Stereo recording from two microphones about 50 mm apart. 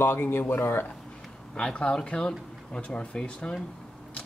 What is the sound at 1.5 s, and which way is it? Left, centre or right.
Speech, centre.